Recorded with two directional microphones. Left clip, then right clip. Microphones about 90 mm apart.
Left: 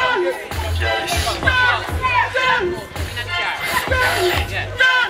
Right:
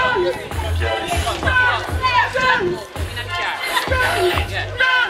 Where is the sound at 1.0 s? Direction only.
15° left (ahead or behind).